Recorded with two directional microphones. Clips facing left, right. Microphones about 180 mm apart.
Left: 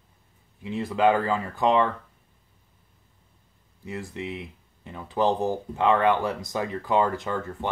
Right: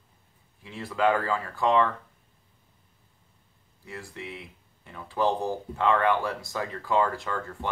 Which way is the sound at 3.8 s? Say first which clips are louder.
Left 6 dB; 20° left (ahead or behind).